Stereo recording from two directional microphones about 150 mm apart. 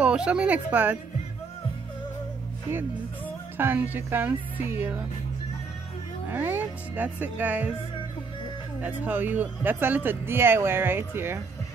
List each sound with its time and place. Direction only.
0.0 s speech: 5° right (ahead or behind)
3.5 s speech: 15° right (ahead or behind)
6.3 s speech: 10° right (ahead or behind)
8.8 s speech: 10° right (ahead or behind)